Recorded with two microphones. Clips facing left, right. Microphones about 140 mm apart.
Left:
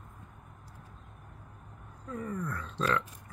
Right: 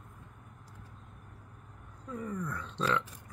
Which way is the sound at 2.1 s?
10° right (ahead or behind).